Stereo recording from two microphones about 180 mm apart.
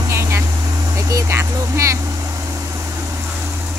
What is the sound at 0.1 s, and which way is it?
Vehicle, 15° right (ahead or behind).